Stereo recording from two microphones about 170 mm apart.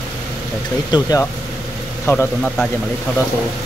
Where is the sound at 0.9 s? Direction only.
20° left (ahead or behind).